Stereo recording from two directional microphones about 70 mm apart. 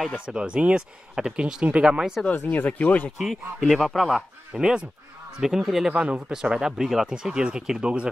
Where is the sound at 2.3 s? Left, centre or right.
Left.